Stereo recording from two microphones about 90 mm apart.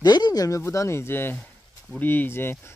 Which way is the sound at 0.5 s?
30° left (ahead or behind).